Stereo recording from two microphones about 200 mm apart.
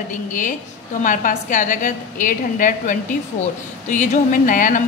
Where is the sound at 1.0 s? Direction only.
40° left (ahead or behind).